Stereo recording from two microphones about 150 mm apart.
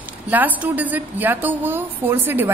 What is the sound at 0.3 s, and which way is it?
A woman's voice, 10° right (ahead or behind).